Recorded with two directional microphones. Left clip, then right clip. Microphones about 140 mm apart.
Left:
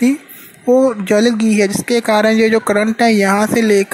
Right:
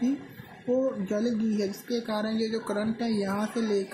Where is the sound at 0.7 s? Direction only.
45° left (ahead or behind).